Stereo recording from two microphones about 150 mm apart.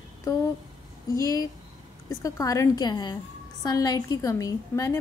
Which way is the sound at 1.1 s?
25° left (ahead or behind).